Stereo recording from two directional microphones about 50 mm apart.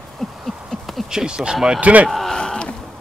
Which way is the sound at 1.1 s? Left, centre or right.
Centre.